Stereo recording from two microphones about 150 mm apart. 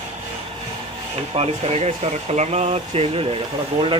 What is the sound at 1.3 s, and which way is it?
Speech, 40° right (ahead or behind).